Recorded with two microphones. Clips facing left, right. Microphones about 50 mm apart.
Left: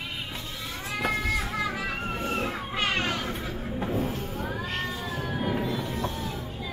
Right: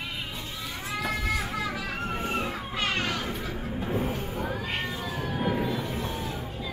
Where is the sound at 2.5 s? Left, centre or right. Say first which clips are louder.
Left 1 dB; centre.